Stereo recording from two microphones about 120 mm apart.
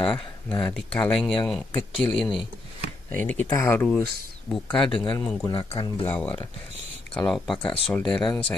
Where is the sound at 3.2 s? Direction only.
15° left (ahead or behind).